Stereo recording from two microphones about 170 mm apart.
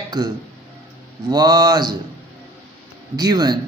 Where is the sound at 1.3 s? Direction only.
25° right (ahead or behind).